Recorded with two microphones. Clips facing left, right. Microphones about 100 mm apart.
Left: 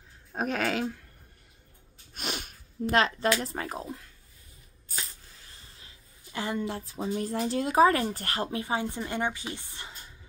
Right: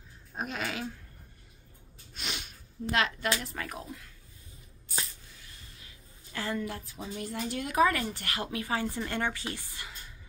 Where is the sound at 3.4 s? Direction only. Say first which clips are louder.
Left 5 dB; 30° left (ahead or behind).